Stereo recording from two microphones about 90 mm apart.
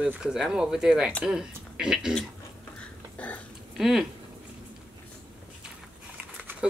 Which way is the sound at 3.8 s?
5° right (ahead or behind).